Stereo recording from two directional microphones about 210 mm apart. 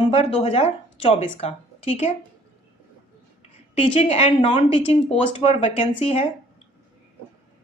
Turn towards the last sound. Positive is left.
turn(degrees=30)  # may be behind; listen again after turning